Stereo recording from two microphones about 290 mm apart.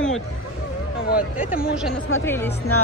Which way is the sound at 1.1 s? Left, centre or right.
Left.